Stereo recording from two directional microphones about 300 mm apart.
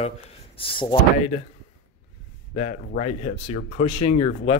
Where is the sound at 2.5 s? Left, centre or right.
Left.